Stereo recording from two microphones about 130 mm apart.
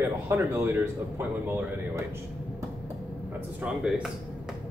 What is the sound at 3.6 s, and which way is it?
Speech, 5° right (ahead or behind).